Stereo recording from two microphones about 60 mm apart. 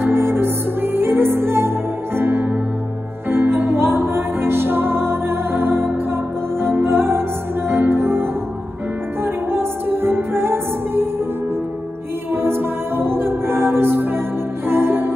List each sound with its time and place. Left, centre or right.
0.0 s music: right
12.4 s music: right